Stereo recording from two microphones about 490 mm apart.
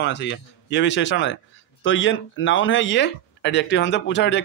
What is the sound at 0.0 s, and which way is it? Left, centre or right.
Speech, left.